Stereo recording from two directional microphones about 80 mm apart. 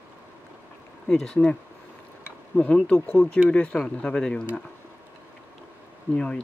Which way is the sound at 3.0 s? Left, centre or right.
Left.